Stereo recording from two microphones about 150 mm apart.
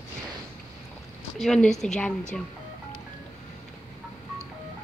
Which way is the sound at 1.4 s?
5° left (ahead or behind).